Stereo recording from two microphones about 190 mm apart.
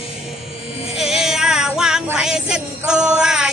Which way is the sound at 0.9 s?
Centre (ahead or behind).